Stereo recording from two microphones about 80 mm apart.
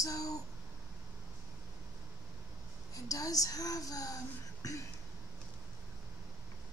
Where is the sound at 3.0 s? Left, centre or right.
Left.